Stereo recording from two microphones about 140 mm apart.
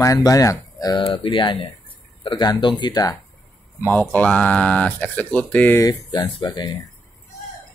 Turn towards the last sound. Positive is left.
turn(degrees=30)  # may be behind; listen again after turning